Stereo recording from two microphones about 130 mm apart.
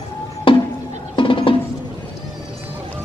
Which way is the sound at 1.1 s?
40° left (ahead or behind).